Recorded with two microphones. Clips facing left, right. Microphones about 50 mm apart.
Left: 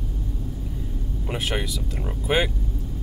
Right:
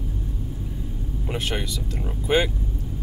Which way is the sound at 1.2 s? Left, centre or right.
Centre.